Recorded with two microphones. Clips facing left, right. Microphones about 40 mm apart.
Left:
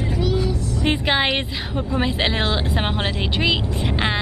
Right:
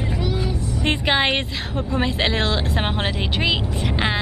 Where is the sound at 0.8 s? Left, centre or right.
Centre.